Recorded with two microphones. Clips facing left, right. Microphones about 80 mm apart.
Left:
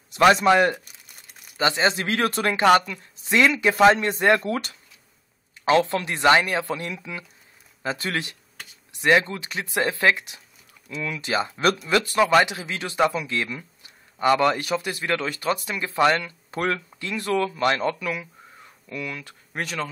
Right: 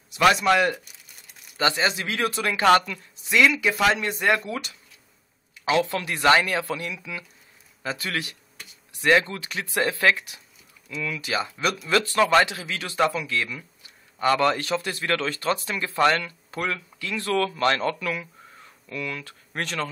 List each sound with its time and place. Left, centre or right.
0.5 s speech: left
2.6 s speech: centre
3.3 s speech: left
4.5 s speech: left
5.9 s speech: left
11.8 s speech: centre
12.5 s speech: left
16.6 s speech: left
17.1 s speech: centre
18.0 s a sound: centre
18.9 s speech: centre